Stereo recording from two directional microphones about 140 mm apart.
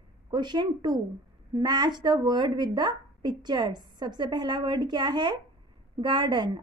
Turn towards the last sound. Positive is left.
turn(degrees=-35)  # may be behind; listen again after turning